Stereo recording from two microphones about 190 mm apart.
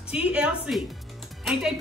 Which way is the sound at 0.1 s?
5° right (ahead or behind).